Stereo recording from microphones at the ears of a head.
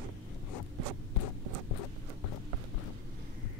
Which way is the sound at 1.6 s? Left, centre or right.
Left.